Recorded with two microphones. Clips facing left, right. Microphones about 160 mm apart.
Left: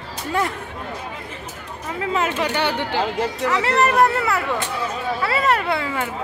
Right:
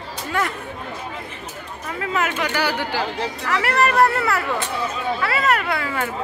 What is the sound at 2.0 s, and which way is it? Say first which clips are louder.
Speech: left 2 dB; 25° left (ahead or behind).